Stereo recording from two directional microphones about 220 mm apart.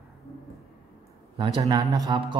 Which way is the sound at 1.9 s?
20° right (ahead or behind).